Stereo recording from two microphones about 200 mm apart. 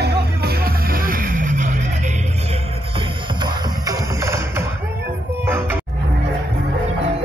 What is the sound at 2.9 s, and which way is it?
Music, 20° right (ahead or behind).